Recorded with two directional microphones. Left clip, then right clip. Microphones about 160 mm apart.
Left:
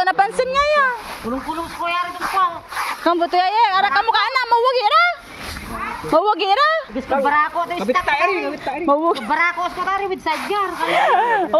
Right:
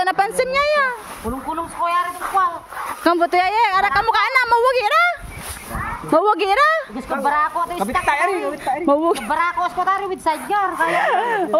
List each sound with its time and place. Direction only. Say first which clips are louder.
0.0 s a sound: left 1 dB; 35° right (ahead or behind)
3.0 s a woman's voice: right 1 dB; 45° right (ahead or behind)
7.2 s speech: right 1 dB; 10° right (ahead or behind)
8.8 s speech: left 1 dB; 40° right (ahead or behind)
9.3 s speech: left 1 dB; 5° right (ahead or behind)
10.5 s speech: right 1 dB; 15° right (ahead or behind)